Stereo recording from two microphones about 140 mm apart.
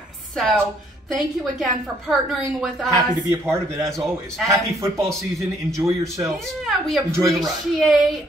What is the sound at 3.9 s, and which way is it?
Speech, 5° left (ahead or behind).